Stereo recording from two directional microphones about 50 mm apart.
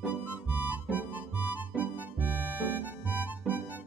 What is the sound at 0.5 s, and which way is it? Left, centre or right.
Music, right.